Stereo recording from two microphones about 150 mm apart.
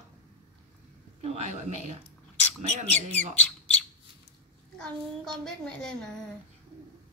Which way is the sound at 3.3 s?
10° left (ahead or behind).